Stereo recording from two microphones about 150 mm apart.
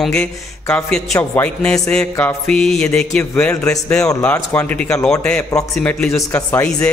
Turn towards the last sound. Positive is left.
turn(degrees=10)  # may be behind; listen again after turning